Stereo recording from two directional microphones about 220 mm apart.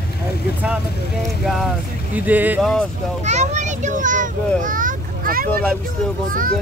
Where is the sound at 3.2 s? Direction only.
30° right (ahead or behind).